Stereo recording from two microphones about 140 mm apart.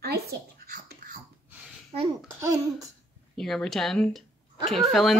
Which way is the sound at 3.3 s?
5° left (ahead or behind).